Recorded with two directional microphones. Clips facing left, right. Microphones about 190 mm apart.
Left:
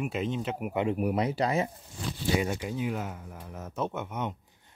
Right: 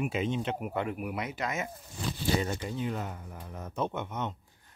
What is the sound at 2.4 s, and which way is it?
Speech, 10° left (ahead or behind).